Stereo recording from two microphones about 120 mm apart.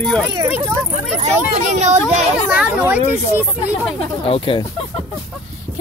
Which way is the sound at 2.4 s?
10° right (ahead or behind).